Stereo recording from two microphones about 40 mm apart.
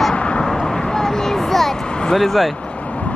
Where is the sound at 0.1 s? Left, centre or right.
Left.